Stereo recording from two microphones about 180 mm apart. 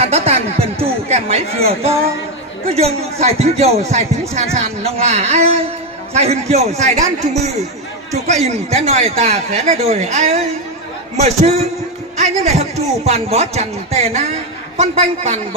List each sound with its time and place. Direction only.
0.0 s a sound: 35° right (ahead or behind)
2.7 s speech: 35° right (ahead or behind)
8.1 s speech: 40° right (ahead or behind)